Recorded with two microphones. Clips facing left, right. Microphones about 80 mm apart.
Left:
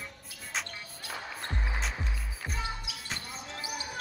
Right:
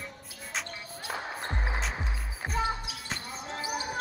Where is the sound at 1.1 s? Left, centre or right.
Right.